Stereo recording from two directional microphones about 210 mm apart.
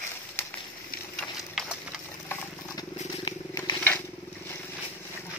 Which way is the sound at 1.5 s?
Centre (ahead or behind).